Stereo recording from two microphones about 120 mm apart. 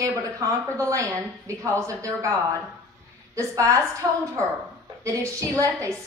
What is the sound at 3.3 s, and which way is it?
A woman's voice, 25° right (ahead or behind).